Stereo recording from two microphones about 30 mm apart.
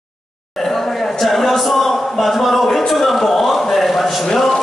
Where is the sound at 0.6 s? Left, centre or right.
Centre.